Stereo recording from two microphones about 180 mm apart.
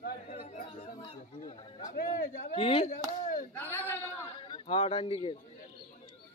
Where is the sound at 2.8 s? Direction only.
50° left (ahead or behind).